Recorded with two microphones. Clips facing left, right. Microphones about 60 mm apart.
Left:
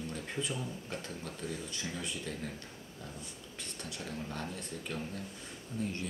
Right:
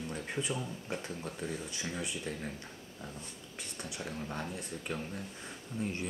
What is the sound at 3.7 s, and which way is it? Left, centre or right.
Speech, centre.